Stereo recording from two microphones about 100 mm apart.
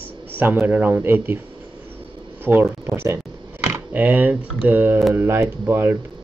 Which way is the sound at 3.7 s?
15° right (ahead or behind).